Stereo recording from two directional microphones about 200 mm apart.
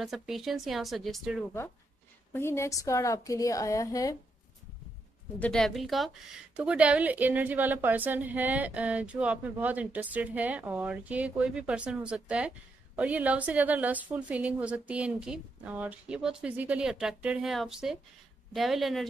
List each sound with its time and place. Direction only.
0.0 s a woman's voice: centre (ahead or behind)
2.3 s a woman's voice: 10° left (ahead or behind)
5.4 s a woman's voice: 5° left (ahead or behind)